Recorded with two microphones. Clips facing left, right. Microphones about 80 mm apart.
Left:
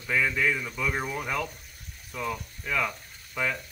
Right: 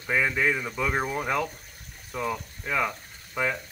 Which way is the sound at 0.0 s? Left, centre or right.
Right.